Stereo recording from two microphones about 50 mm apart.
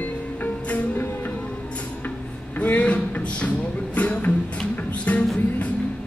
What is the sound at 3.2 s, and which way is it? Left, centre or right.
Music, left.